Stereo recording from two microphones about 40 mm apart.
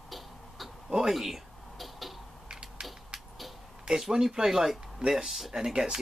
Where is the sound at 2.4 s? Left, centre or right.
Right.